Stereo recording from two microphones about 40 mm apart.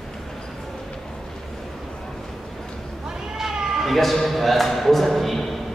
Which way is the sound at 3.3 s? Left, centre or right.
Centre.